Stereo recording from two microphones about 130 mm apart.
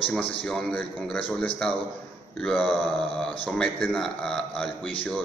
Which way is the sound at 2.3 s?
5° left (ahead or behind).